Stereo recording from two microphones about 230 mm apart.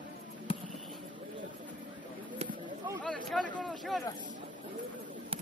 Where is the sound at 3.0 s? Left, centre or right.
Centre.